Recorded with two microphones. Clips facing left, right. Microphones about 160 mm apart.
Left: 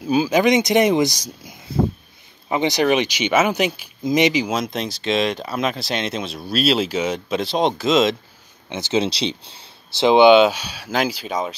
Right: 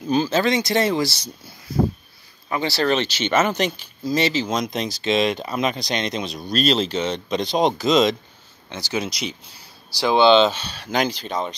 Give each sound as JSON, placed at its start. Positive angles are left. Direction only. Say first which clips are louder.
{"t": 0.0, "sound": "speech", "louder": "left 3 dB", "side_deg": 10}
{"t": 2.5, "sound": "speech", "louder": "left 3 dB", "side_deg": 20}
{"t": 8.6, "sound": "speech", "louder": "left 6 dB", "side_deg": 20}